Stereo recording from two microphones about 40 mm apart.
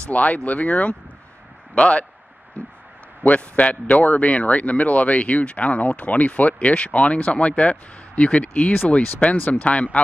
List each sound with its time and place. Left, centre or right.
0.1 s speech: left
3.3 s speech: left